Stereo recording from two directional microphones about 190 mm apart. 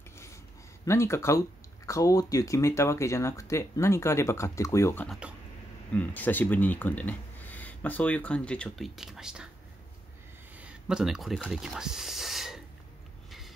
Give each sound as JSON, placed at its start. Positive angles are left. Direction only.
{"t": 0.8, "sound": "speech", "side_deg": 15}
{"t": 10.5, "sound": "speech", "side_deg": -5}